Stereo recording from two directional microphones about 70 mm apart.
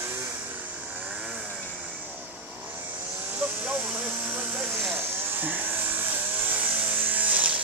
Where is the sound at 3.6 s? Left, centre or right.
Right.